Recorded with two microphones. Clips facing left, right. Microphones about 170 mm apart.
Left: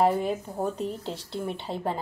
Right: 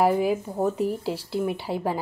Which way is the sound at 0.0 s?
5° right (ahead or behind).